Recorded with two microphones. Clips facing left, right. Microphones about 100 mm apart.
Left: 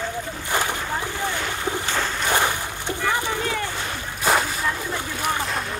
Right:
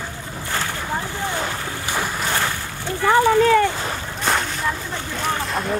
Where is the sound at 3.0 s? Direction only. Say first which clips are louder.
Right 11 dB; 60° right (ahead or behind).